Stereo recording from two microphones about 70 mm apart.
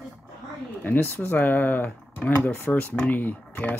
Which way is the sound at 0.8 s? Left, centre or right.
Left.